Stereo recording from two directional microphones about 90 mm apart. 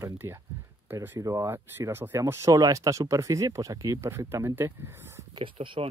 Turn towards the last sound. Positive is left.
turn(degrees=-70)  # may be behind; listen again after turning